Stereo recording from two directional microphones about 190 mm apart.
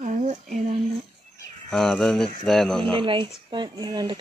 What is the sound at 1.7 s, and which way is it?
Speech, 5° left (ahead or behind).